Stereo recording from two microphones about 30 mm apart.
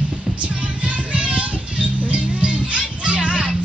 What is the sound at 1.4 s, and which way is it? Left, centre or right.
Music, right.